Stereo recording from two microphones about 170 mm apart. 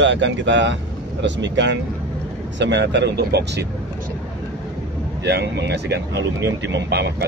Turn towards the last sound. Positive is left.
turn(degrees=-75)  # may be behind; listen again after turning